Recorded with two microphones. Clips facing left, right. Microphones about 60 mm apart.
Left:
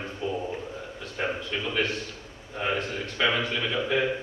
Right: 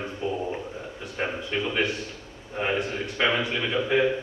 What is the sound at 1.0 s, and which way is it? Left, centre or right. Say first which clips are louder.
A man's voice: even; right.